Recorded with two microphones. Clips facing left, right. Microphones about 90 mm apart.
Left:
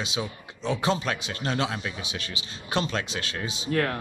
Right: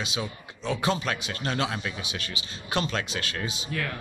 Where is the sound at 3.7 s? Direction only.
50° left (ahead or behind).